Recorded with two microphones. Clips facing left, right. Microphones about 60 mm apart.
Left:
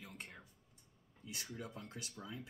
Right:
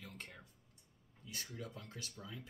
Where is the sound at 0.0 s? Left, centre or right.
Centre.